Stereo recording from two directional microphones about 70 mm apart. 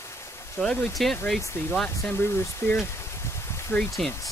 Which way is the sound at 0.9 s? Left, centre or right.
Centre.